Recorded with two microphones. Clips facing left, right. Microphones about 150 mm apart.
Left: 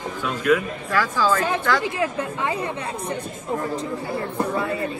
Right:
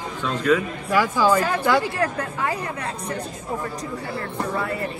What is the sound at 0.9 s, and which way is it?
Speech, 15° right (ahead or behind).